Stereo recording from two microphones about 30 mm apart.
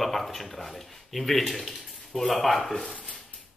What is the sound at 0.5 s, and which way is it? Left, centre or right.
Speech, centre.